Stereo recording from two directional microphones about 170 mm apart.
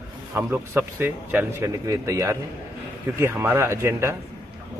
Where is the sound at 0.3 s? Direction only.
15° right (ahead or behind).